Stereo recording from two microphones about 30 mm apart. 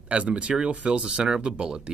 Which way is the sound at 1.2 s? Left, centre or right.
Right.